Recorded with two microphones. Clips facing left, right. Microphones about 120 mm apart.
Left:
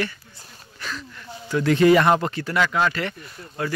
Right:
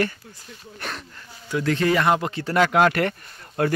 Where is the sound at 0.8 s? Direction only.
55° right (ahead or behind).